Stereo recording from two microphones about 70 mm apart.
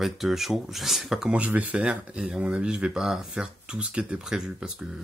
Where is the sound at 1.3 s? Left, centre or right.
Right.